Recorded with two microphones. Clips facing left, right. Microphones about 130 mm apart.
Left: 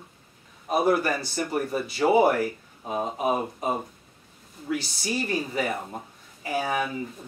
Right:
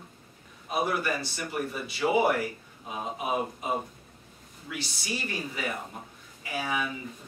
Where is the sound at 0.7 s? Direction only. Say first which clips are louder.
Left 6 dB; 40° left (ahead or behind).